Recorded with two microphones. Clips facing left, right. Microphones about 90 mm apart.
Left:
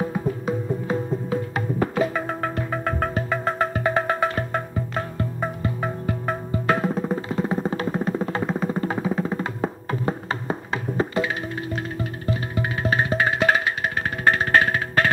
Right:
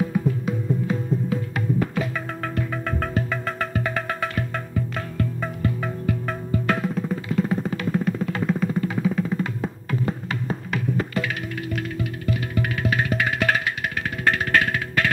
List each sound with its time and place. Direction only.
0.0 s music: 35° left (ahead or behind)